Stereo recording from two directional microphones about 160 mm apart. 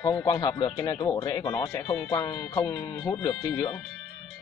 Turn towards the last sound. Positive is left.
turn(degrees=15)  # may be behind; listen again after turning